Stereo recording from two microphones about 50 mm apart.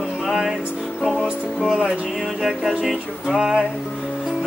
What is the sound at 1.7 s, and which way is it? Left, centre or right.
Music, centre.